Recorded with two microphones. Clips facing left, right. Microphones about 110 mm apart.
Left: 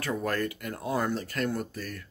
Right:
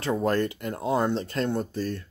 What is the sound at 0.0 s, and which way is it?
Speech, 25° right (ahead or behind).